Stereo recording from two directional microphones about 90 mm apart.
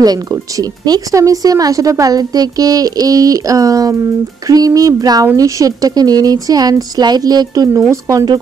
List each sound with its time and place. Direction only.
0.0 s speech: 45° right (ahead or behind)